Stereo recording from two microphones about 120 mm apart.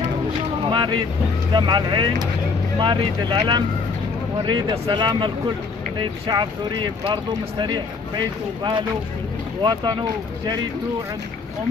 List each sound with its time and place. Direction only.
0.7 s speech: 40° right (ahead or behind)